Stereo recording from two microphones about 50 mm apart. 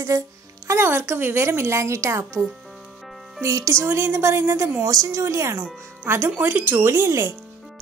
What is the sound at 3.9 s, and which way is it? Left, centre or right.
Speech, right.